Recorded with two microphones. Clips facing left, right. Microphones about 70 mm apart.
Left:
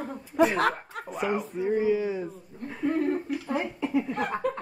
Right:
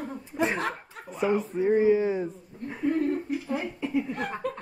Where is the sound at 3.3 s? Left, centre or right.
Left.